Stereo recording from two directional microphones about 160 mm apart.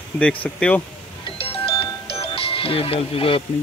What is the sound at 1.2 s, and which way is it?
Music, 35° left (ahead or behind).